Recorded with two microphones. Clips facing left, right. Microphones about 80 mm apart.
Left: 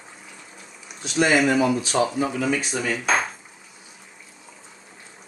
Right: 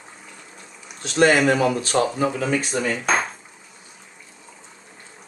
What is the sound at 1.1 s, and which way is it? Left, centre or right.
Speech, right.